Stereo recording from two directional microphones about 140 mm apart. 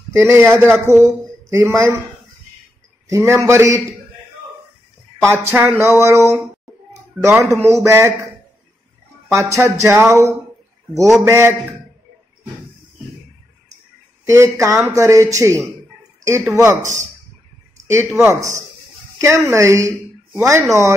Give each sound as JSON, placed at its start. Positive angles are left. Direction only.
{"t": 0.1, "sound": "a man's voice", "side_deg": -20}
{"t": 3.1, "sound": "a man's voice", "side_deg": -20}
{"t": 5.2, "sound": "a man's voice", "side_deg": -20}
{"t": 9.3, "sound": "a man's voice", "side_deg": -20}
{"t": 14.2, "sound": "a man's voice", "side_deg": -20}
{"t": 18.1, "sound": "a man's voice", "side_deg": -20}